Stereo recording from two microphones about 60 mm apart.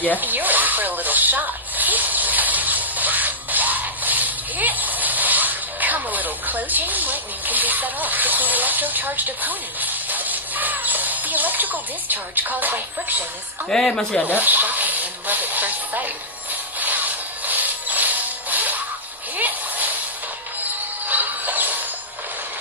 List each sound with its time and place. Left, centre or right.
0.2 s a sound: right
13.7 s speech: centre
14.2 s speech: right
16.8 s music: right
19.3 s a sound: right
21.1 s music: right